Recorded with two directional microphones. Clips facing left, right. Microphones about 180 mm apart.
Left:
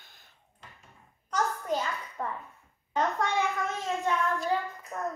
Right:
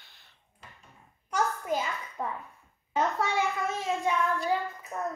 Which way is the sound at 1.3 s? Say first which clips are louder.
Right 1 dB; 10° right (ahead or behind).